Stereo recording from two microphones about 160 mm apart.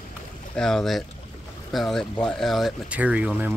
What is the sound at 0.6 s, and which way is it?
Speech, 5° left (ahead or behind).